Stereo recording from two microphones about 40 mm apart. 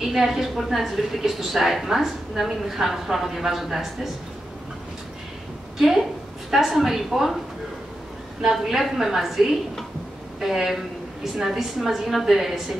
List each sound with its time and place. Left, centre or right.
0.0 s a woman's voice: centre
5.8 s a woman's voice: centre
8.4 s a woman's voice: centre